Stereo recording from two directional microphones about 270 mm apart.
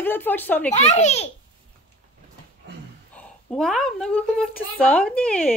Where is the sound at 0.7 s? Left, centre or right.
Left.